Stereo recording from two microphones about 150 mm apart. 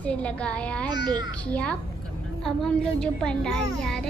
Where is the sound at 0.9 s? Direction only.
30° right (ahead or behind).